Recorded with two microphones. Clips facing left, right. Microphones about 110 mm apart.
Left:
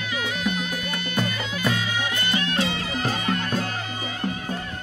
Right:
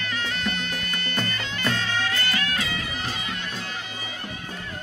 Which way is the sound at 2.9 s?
45° left (ahead or behind).